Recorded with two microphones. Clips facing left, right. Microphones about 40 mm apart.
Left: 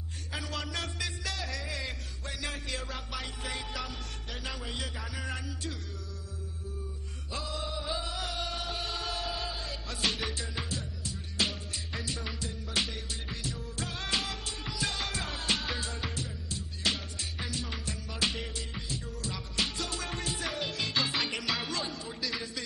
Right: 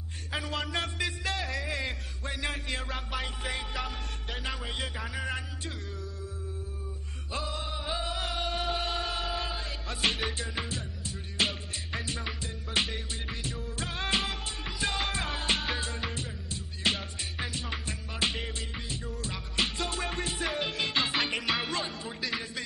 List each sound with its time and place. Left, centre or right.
0.3 s music: right
7.3 s music: right